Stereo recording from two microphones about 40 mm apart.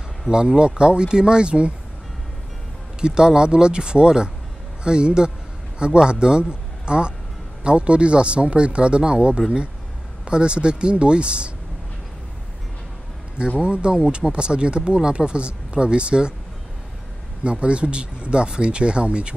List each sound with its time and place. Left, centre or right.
0.3 s speech: right
3.0 s speech: right
13.6 s speech: right
17.4 s speech: right